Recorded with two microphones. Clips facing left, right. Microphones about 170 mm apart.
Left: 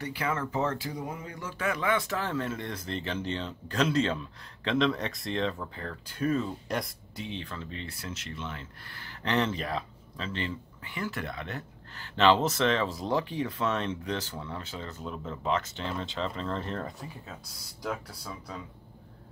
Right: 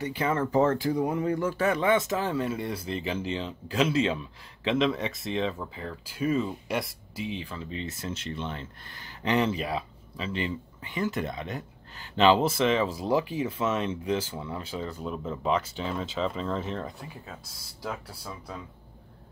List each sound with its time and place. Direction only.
0.0 s speech: 20° right (ahead or behind)
0.4 s speech: 45° right (ahead or behind)
1.6 s speech: 30° right (ahead or behind); by 7.8 s 10° right (ahead or behind)
7.8 s speech: 25° right (ahead or behind)
8.9 s speech: 15° right (ahead or behind)